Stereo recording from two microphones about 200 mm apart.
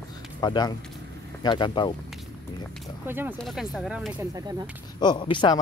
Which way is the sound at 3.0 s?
10° right (ahead or behind).